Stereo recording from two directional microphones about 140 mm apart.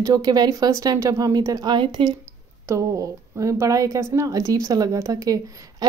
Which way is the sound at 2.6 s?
20° right (ahead or behind).